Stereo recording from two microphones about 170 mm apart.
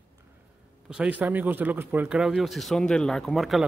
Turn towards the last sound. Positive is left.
turn(degrees=0)  # may be behind; listen again after turning